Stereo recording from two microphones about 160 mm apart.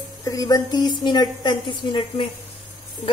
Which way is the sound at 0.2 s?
20° left (ahead or behind).